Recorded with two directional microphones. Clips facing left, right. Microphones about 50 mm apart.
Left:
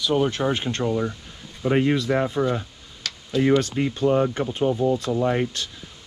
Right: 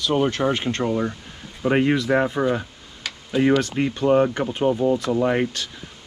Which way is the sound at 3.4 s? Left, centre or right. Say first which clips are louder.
Right 1 dB; right.